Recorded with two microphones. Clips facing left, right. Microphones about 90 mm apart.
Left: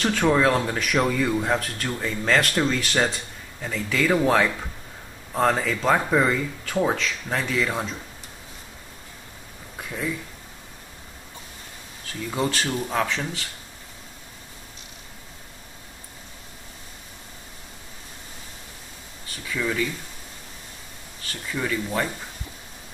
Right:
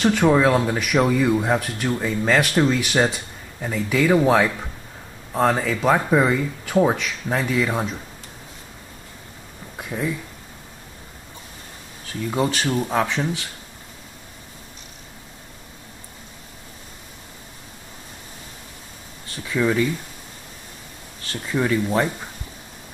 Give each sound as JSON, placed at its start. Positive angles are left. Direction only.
{"t": 0.0, "sound": "speech", "side_deg": -10}
{"t": 9.8, "sound": "a sound", "side_deg": -15}
{"t": 12.3, "sound": "speech", "side_deg": -10}
{"t": 19.5, "sound": "speech", "side_deg": -15}
{"t": 21.5, "sound": "speech", "side_deg": -20}